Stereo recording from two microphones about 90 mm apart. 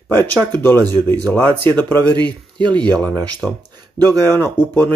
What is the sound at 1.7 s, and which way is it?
Speech, 50° right (ahead or behind).